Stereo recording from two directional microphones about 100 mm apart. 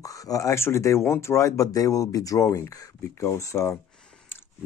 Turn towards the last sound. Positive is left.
turn(degrees=30)  # may be behind; listen again after turning